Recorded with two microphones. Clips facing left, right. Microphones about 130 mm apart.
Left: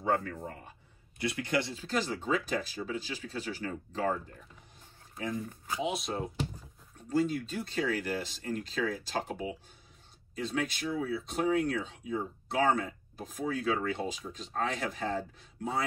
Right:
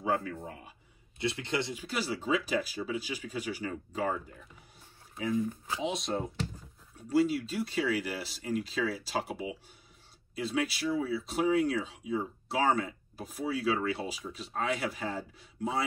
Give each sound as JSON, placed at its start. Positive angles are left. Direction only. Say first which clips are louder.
{"t": 0.0, "sound": "speech", "louder": "left 1 dB", "side_deg": -10}
{"t": 1.1, "sound": "speech", "louder": "left 1 dB", "side_deg": -25}
{"t": 5.1, "sound": "speech", "louder": "right 5 dB", "side_deg": -5}